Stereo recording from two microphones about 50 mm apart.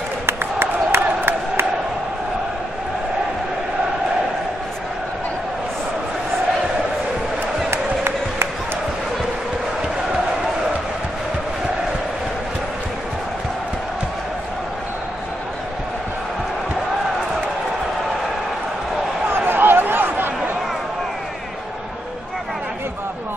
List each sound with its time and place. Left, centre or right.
0.3 s crowd: right
7.7 s music: right
19.3 s a sound: right